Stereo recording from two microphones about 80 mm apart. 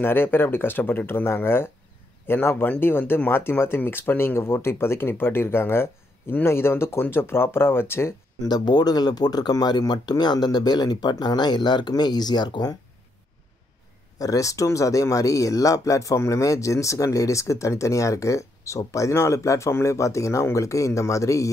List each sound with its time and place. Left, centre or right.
0.0 s speech: left
8.4 s speech: left
14.1 s speech: left